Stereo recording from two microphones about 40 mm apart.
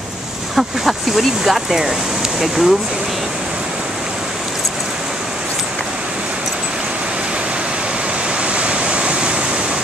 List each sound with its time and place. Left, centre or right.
0.6 s speech: centre
8.5 s waves: right